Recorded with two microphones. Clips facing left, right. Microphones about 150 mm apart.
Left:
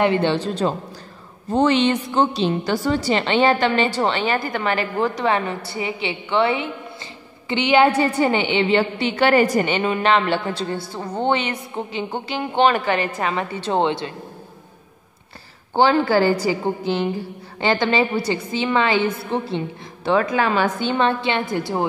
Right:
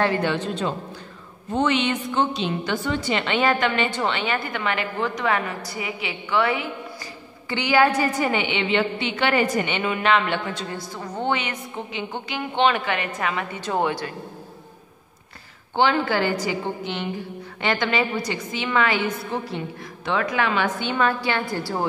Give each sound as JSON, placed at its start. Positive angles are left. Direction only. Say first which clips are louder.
{"t": 0.0, "sound": "a woman's voice", "louder": "left 4 dB", "side_deg": 25}
{"t": 15.7, "sound": "a woman's voice", "louder": "left 4 dB", "side_deg": 35}